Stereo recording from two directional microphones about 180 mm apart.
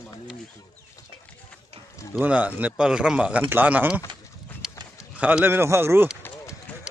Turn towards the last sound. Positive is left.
turn(degrees=-15)  # may be behind; listen again after turning